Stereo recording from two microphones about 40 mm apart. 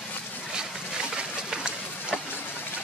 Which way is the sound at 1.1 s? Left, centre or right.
Right.